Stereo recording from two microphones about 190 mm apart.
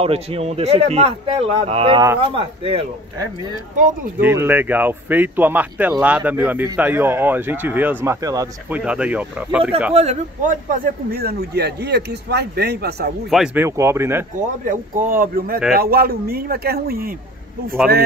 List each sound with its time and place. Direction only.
0.0 s speech: 30° right (ahead or behind)
4.2 s speech: 10° right (ahead or behind)
9.9 s speech: 40° right (ahead or behind); by 13.1 s 55° right (ahead or behind)
13.3 s speech: 5° right (ahead or behind)
13.7 s speech: 15° right (ahead or behind)
14.6 s speech: 45° right (ahead or behind)